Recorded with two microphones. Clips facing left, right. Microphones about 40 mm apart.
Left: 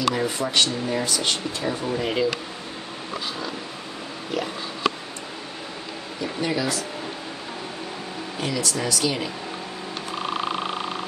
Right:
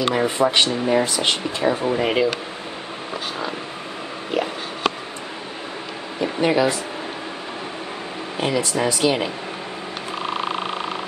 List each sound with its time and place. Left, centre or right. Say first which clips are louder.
0.0 s speech: right 5 dB; right
6.2 s speech: right 7 dB; right
8.4 s speech: right 5 dB; right